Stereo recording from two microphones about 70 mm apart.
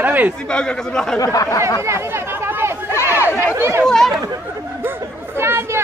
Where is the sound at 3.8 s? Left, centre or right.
Centre.